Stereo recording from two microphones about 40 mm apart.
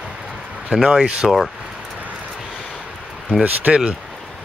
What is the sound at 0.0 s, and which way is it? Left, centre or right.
Bird, centre.